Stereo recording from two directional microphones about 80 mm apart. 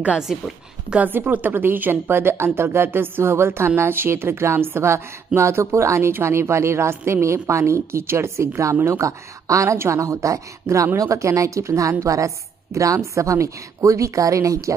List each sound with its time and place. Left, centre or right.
0.3 s a woman's voice: centre
0.8 s a woman's voice: centre; by 14.7 s right